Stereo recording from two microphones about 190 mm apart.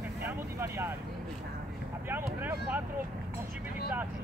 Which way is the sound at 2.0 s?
10° right (ahead or behind).